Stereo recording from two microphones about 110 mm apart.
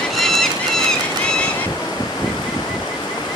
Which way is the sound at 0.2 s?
5° left (ahead or behind).